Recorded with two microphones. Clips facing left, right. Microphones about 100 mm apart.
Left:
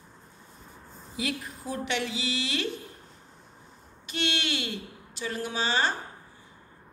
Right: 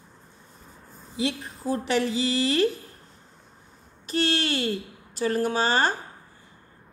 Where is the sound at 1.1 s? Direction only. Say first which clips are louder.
Right 4 dB; 30° right (ahead or behind).